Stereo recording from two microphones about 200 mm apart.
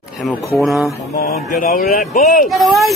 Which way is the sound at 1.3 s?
45° left (ahead or behind).